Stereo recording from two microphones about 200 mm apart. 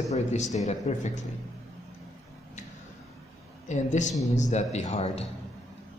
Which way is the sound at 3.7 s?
35° left (ahead or behind).